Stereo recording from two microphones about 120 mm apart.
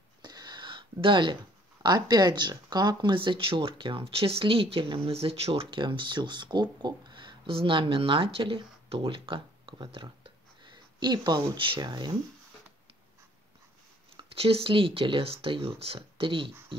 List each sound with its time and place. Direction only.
0.2 s speech: 35° right (ahead or behind)
14.1 s speech: 55° right (ahead or behind)